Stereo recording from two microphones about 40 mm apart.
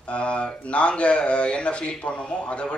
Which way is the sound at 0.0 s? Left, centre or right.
Left.